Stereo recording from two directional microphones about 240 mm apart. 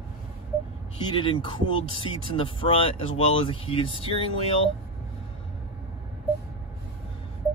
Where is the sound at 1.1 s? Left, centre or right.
Centre.